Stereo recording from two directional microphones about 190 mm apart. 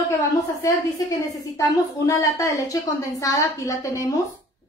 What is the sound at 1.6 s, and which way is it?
A woman's voice, 15° left (ahead or behind).